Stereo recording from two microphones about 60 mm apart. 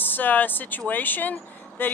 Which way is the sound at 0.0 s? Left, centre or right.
Left.